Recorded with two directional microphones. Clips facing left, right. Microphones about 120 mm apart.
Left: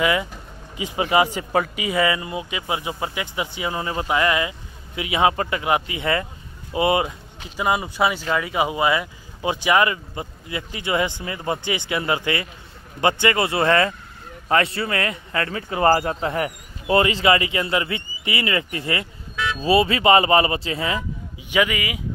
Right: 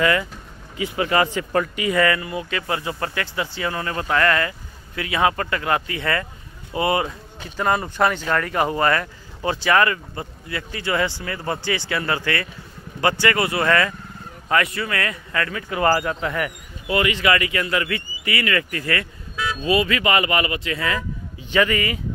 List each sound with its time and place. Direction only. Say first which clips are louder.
0.0 s speech: right 1 dB; 15° left (ahead or behind)
7.4 s speech: right 1 dB; 10° left (ahead or behind); by 21.0 s 25° left (ahead or behind)
21.5 s speech: right 2 dB; 10° left (ahead or behind)